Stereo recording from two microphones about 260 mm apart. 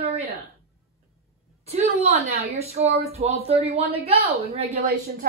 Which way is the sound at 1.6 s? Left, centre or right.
Right.